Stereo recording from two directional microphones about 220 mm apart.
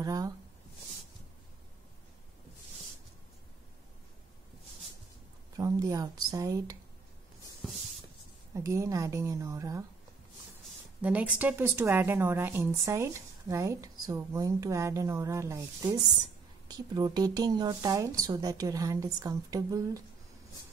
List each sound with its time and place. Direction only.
0.0 s speech: 15° right (ahead or behind)
5.6 s speech: 15° right (ahead or behind)
8.5 s speech: 15° right (ahead or behind)
11.0 s speech: 5° right (ahead or behind)